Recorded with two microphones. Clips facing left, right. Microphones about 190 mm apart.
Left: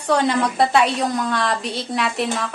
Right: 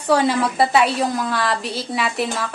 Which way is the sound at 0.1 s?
5° right (ahead or behind).